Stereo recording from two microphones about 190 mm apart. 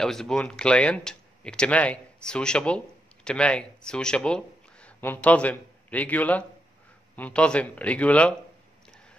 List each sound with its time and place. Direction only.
0.0 s speech: 5° left (ahead or behind)